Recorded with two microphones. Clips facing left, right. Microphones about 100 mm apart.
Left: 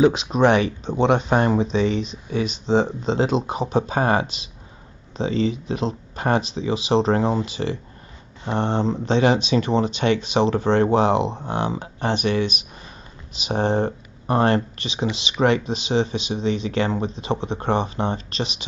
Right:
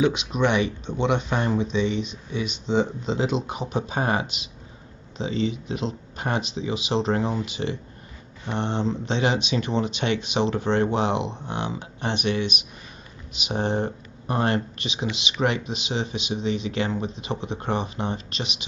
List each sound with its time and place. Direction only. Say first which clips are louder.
0.0 s speech: left 5 dB; 35° left (ahead or behind)